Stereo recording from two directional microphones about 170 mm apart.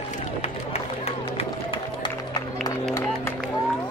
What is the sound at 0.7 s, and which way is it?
Run, 35° left (ahead or behind).